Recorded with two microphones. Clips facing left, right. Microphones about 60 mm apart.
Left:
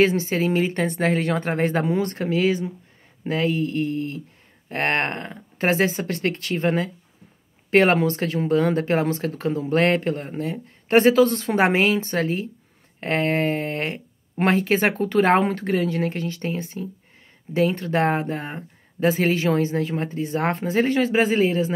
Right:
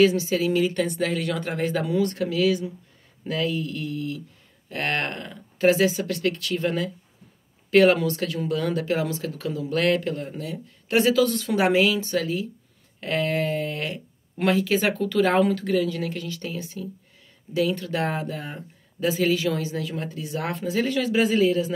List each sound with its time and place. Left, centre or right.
0.0 s speech: left